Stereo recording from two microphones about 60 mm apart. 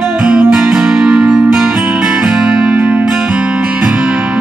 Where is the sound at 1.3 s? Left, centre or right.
Centre.